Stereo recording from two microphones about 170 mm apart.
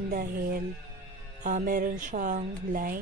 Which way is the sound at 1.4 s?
50° right (ahead or behind).